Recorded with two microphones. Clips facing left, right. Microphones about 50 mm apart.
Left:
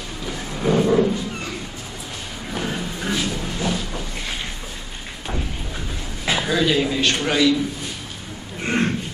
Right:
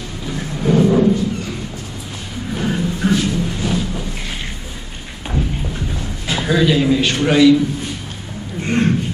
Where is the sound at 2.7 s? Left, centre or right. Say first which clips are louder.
Right 10 dB; centre.